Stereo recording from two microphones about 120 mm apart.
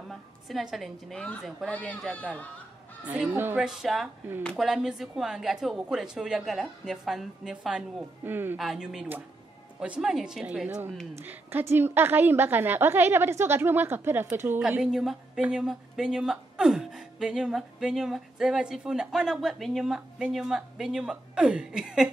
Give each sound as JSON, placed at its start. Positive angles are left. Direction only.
{"t": 0.1, "sound": "a woman's voice", "side_deg": 0}
{"t": 3.1, "sound": "a woman's voice", "side_deg": -10}
{"t": 3.5, "sound": "a woman's voice", "side_deg": -5}
{"t": 4.4, "sound": "speech", "side_deg": 10}
{"t": 4.6, "sound": "a woman's voice", "side_deg": -5}
{"t": 8.2, "sound": "a woman's voice", "side_deg": -15}
{"t": 8.5, "sound": "a woman's voice", "side_deg": -5}
{"t": 14.6, "sound": "a woman's voice", "side_deg": -5}